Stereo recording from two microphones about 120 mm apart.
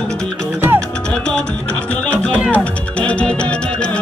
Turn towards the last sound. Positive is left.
turn(degrees=10)  # may be behind; listen again after turning